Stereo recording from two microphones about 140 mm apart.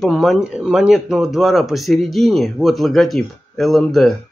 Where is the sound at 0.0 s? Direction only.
Centre (ahead or behind).